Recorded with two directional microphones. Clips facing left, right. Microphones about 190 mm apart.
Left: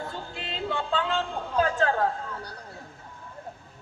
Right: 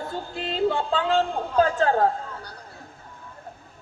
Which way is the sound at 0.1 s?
40° right (ahead or behind).